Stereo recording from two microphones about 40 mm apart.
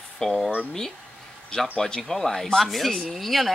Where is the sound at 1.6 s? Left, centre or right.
Centre.